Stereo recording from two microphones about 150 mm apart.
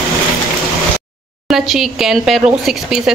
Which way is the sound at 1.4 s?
Centre (ahead or behind).